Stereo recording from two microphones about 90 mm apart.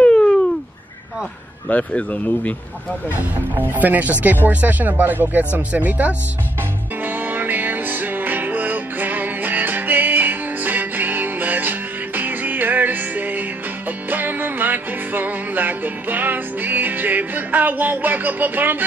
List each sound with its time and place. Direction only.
0.0 s a sound: 10° left (ahead or behind)
1.7 s speech: 15° left (ahead or behind)
3.2 s speech: 20° right (ahead or behind)
7.0 s music: 20° right (ahead or behind)